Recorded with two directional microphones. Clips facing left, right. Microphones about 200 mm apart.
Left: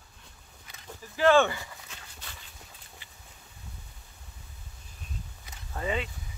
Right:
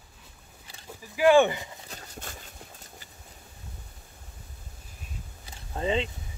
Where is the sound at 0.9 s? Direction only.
10° right (ahead or behind).